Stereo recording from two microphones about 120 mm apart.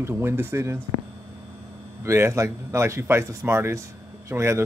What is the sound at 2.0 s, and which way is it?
Speech, 25° right (ahead or behind).